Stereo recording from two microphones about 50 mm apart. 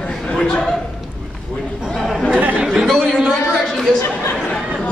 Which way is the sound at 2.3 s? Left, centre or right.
Right.